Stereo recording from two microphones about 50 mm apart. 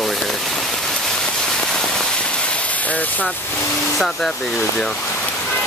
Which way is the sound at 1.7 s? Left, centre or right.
Centre.